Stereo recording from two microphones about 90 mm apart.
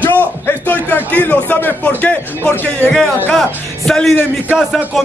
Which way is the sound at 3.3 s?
5° left (ahead or behind).